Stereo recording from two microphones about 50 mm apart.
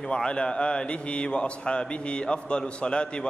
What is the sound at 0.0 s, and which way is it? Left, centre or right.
A man's voice, centre.